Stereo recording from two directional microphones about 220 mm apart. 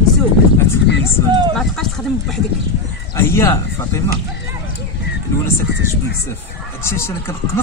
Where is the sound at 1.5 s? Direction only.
Centre (ahead or behind).